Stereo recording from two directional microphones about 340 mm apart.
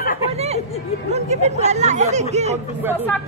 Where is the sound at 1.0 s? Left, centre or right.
Centre.